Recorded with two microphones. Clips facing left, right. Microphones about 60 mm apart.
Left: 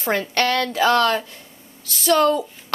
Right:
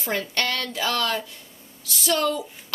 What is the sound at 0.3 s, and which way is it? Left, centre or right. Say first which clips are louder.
Speech: left 7 dB; left.